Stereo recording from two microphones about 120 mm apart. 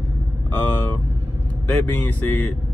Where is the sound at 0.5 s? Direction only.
20° left (ahead or behind).